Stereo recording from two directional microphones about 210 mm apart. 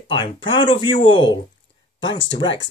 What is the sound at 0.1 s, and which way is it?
Speech, 25° left (ahead or behind).